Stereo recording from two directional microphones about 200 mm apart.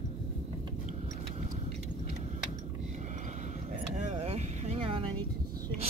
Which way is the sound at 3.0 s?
35° right (ahead or behind).